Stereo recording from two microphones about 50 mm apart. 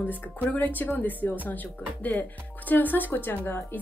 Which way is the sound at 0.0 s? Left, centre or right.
Left.